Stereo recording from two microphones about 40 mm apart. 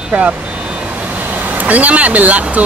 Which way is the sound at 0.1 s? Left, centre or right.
Right.